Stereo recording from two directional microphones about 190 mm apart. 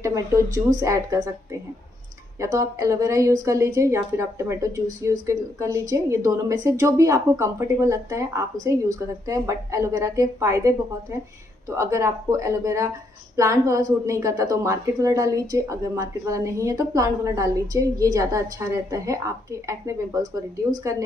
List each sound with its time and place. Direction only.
0.0 s a woman's voice: 15° right (ahead or behind)
2.4 s a woman's voice: 15° right (ahead or behind)